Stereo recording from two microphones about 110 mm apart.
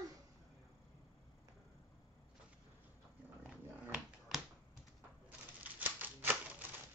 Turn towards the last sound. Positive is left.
turn(degrees=-15)  # may be behind; listen again after turning